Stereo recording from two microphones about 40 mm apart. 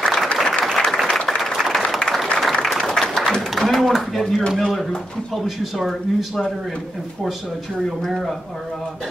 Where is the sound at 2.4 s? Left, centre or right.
Centre.